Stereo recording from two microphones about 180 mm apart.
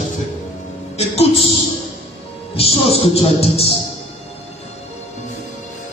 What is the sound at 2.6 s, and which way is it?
Music, 35° left (ahead or behind).